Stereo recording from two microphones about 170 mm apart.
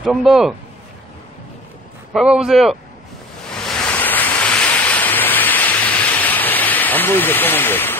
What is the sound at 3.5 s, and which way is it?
Waves, 5° left (ahead or behind).